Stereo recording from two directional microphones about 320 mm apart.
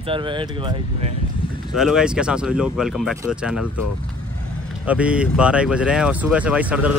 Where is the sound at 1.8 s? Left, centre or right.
Centre.